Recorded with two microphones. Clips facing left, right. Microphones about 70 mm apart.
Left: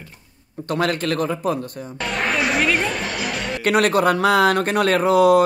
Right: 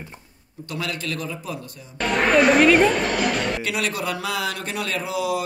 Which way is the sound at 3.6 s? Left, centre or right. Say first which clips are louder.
Left 9 dB; left.